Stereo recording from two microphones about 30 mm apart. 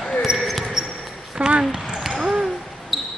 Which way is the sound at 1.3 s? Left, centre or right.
Right.